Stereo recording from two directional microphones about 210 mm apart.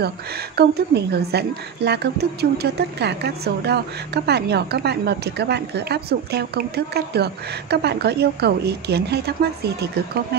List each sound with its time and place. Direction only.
0.6 s a woman's voice: 50° right (ahead or behind)